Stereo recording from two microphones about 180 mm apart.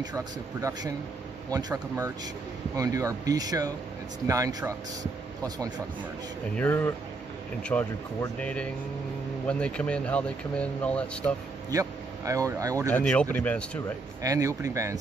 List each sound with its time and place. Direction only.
0.0 s speech: 20° right (ahead or behind)
6.5 s speech: 10° left (ahead or behind)
11.7 s speech: 20° right (ahead or behind)
12.9 s speech: 5° left (ahead or behind)
14.2 s speech: 20° right (ahead or behind)